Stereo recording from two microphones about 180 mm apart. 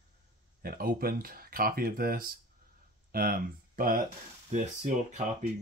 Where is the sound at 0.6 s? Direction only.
55° right (ahead or behind).